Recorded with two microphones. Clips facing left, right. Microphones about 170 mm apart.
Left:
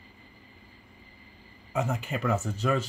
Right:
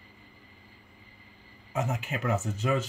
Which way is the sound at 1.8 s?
Centre (ahead or behind).